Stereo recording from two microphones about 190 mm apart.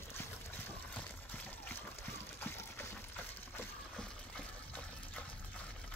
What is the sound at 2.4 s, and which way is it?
Water, 10° left (ahead or behind).